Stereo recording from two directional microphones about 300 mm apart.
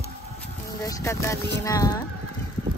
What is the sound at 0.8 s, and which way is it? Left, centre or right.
Speech, centre.